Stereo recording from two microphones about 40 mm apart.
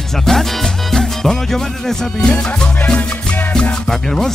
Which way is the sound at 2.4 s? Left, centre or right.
Left.